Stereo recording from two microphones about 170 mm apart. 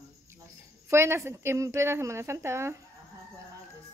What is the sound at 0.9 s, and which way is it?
Speech, 15° right (ahead or behind).